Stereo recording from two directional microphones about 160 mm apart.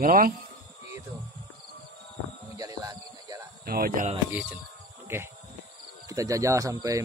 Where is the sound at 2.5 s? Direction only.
25° right (ahead or behind).